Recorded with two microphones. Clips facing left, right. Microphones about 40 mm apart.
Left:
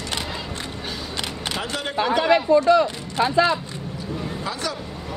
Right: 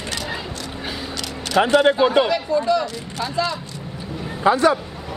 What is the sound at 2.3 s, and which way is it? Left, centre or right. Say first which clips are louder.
A woman's voice: left 4 dB; left.